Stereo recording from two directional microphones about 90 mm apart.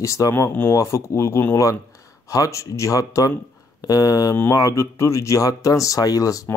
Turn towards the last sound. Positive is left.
turn(degrees=40)  # may be behind; listen again after turning